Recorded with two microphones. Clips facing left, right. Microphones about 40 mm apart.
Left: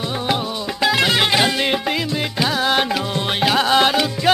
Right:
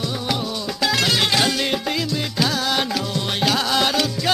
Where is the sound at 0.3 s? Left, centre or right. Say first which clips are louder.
Left 4 dB; left.